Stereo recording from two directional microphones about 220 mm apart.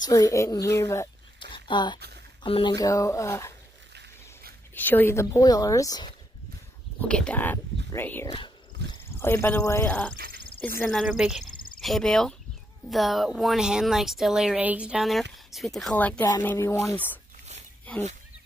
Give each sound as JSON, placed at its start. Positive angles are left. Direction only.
{"t": 0.0, "sound": "speech", "side_deg": 15}
{"t": 3.9, "sound": "a sound", "side_deg": -45}
{"t": 4.7, "sound": "speech", "side_deg": 10}
{"t": 7.0, "sound": "speech", "side_deg": 5}
{"t": 8.8, "sound": "a sound", "side_deg": -50}
{"t": 9.1, "sound": "speech", "side_deg": 10}
{"t": 10.1, "sound": "speech", "side_deg": -45}
{"t": 10.8, "sound": "speech", "side_deg": 5}
{"t": 11.4, "sound": "a sound", "side_deg": 40}
{"t": 11.8, "sound": "speech", "side_deg": 0}